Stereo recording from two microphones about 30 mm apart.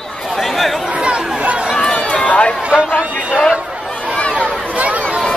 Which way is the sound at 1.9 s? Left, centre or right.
Left.